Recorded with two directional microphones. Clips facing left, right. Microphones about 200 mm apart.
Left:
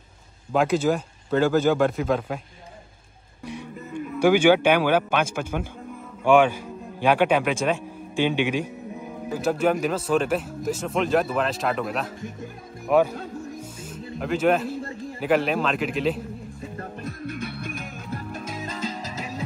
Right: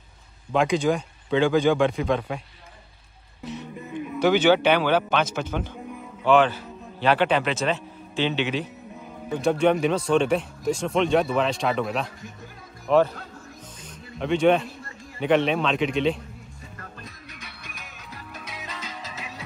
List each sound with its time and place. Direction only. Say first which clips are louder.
0.5 s speech: left 1 dB; 5° left (ahead or behind)
4.2 s a man's voice: left 2 dB; 10° left (ahead or behind)
14.2 s speech: right 2 dB; 5° left (ahead or behind)
17.0 s music: left 12 dB; 55° left (ahead or behind)